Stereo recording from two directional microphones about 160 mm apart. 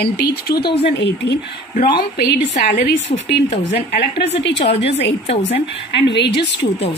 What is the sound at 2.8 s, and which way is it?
Speech, 90° left.